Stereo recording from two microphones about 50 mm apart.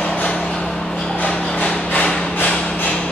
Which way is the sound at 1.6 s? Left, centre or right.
Left.